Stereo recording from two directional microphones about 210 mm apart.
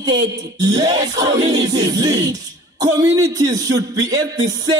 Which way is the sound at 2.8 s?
15° right (ahead or behind).